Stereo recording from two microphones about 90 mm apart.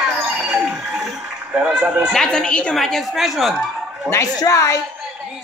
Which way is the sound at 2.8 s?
Centre (ahead or behind).